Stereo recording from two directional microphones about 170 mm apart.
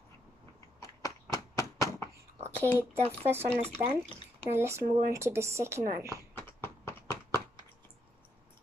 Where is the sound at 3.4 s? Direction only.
35° right (ahead or behind).